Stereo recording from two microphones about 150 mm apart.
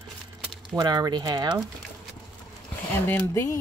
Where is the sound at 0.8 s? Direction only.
25° right (ahead or behind).